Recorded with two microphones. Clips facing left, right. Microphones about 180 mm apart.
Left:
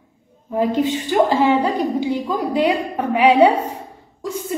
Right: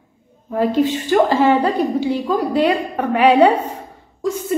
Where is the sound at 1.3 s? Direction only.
15° left (ahead or behind).